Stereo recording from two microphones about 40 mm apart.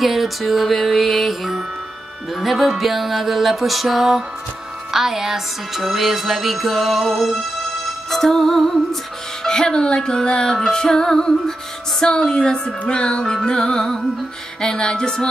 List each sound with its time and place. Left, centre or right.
0.0 s music: centre